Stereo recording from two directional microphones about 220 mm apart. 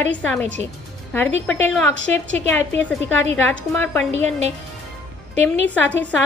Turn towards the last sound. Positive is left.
turn(degrees=5)  # may be behind; listen again after turning